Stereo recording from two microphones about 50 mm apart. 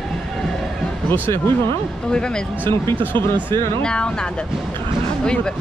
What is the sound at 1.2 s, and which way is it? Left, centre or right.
Speech, left.